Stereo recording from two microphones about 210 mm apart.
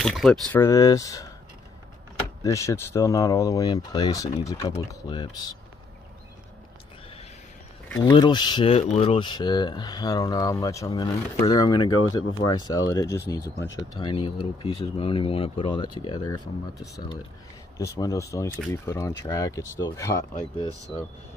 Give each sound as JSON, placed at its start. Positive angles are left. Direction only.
{"t": 0.0, "sound": "speech", "side_deg": 0}
{"t": 0.5, "sound": "speech", "side_deg": 15}
{"t": 2.4, "sound": "speech", "side_deg": 15}
{"t": 8.0, "sound": "speech", "side_deg": 20}